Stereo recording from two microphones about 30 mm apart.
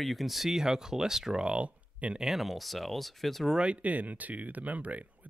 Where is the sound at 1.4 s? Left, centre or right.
Right.